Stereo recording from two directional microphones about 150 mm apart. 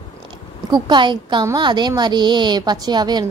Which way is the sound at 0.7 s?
30° right (ahead or behind).